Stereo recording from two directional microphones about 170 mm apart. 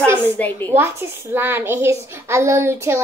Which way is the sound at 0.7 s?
15° right (ahead or behind).